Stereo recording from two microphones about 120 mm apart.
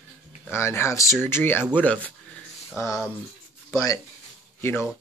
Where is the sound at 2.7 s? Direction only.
25° left (ahead or behind).